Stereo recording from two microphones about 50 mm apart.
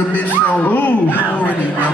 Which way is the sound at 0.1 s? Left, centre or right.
Left.